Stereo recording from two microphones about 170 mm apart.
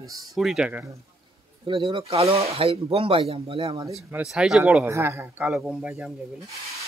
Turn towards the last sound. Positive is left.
turn(degrees=-5)  # may be behind; listen again after turning